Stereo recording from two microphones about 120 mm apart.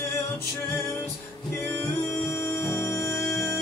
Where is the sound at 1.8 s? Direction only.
20° left (ahead or behind).